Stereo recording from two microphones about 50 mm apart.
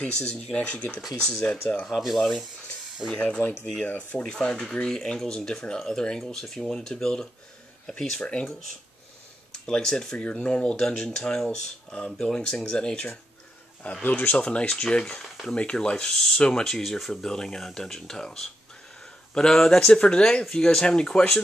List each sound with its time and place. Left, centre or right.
0.3 s speech: centre
1.9 s speech: centre
2.1 s speech: centre
3.1 s speech: left
4.3 s speech: centre
9.7 s speech: centre
10.1 s speech: left
11.9 s speech: left
14.0 s speech: left
14.3 s speech: left
15.5 s speech: left
19.5 s speech: centre
19.9 s speech: centre